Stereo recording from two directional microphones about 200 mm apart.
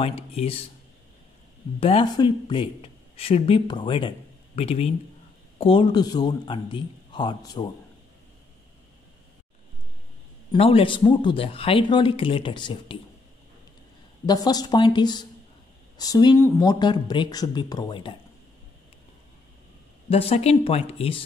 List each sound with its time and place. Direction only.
0.0 s speech: 30° left (ahead or behind)
1.8 s speech: 25° left (ahead or behind)
10.5 s speech: 25° left (ahead or behind)
14.2 s speech: 20° left (ahead or behind)
20.1 s speech: 30° left (ahead or behind)